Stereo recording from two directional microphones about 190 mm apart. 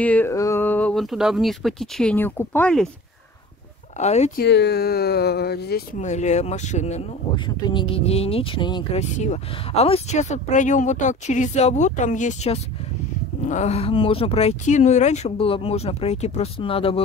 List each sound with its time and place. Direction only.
0.0 s speech: 10° left (ahead or behind)
4.0 s speech: 35° left (ahead or behind)
4.4 s speech: 60° left (ahead or behind)
5.9 s speech: 40° left (ahead or behind)
7.4 s speech: 25° left (ahead or behind)
9.1 s speech: 35° left (ahead or behind)